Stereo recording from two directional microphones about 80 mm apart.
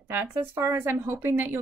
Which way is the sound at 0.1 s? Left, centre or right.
Right.